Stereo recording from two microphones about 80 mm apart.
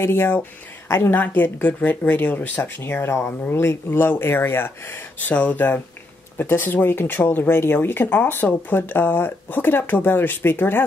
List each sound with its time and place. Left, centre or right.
0.0 s speech: left